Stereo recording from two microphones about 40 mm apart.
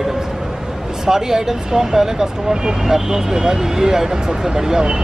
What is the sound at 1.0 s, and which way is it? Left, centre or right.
Speech, centre.